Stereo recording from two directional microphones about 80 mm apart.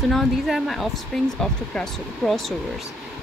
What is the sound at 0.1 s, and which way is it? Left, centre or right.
Speech, centre.